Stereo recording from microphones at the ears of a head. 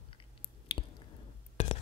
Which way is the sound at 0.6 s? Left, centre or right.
Left.